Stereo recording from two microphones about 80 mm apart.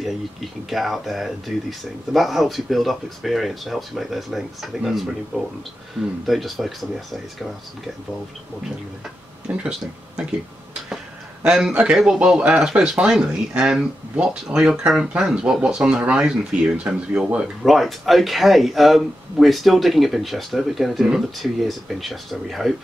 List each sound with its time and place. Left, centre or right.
0.7 s speech: centre
9.5 s speech: right
11.4 s speech: centre
17.6 s speech: centre